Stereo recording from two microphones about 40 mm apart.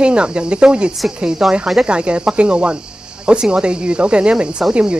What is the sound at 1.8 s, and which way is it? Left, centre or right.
Speech, right.